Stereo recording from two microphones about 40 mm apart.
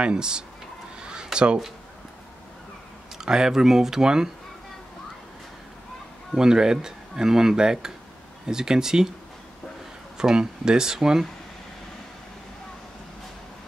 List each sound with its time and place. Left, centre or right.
0.0 s speech: right
1.0 s a sound: right
3.2 s speech: centre
6.3 s speech: centre
10.1 s speech: centre